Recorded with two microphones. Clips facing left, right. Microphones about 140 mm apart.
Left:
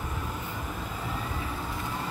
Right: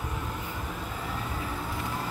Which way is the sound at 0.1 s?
Centre (ahead or behind).